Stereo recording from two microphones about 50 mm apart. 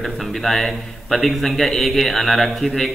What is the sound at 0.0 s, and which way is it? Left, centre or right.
A man's voice, centre.